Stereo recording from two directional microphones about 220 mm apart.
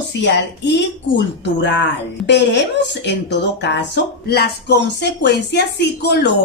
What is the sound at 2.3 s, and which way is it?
A woman's voice, 50° left (ahead or behind).